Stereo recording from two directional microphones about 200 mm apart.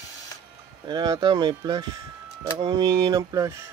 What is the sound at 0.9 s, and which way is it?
Speech, 20° right (ahead or behind).